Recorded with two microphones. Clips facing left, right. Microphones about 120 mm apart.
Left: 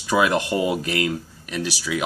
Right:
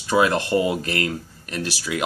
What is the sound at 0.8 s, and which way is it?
Speech, 45° right (ahead or behind).